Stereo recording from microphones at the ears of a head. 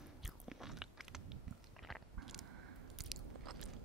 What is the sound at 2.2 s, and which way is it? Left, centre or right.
Biting, right.